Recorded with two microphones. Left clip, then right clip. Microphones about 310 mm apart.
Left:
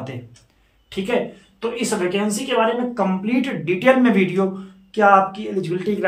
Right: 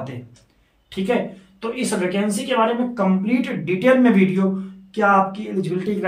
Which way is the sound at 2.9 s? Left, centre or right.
Centre.